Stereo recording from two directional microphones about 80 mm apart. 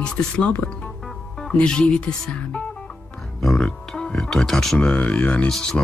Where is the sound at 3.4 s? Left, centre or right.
Centre.